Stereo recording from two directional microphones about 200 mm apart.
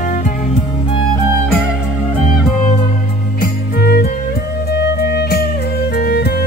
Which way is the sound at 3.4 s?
50° left (ahead or behind).